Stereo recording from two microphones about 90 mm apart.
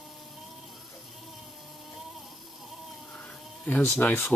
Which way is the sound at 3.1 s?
15° left (ahead or behind).